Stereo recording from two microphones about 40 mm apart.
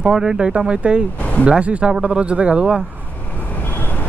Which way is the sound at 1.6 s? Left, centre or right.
Right.